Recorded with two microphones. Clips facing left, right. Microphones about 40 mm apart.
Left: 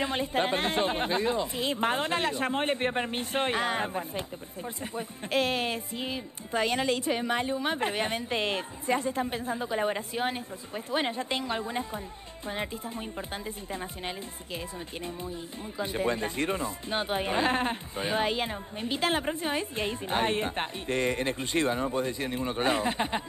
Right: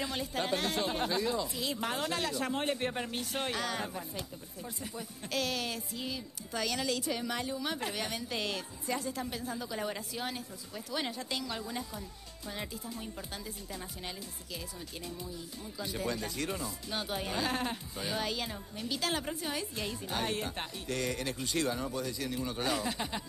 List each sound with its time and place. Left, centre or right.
0.0 s speech: left
15.8 s speech: left